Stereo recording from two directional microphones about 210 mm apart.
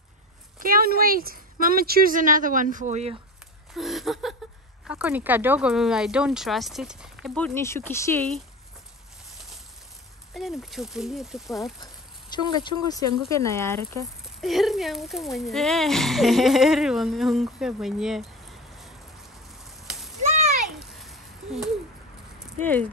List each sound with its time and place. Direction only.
0.6 s speech: 45° right (ahead or behind)
3.7 s speech: centre (ahead or behind)
10.3 s speech: centre (ahead or behind)
11.8 s speech: 20° left (ahead or behind)
14.4 s speech: centre (ahead or behind)
19.8 s a sound: centre (ahead or behind)
22.6 s speech: 10° left (ahead or behind)